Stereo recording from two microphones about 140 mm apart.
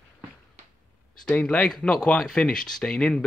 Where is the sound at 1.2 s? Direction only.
10° left (ahead or behind).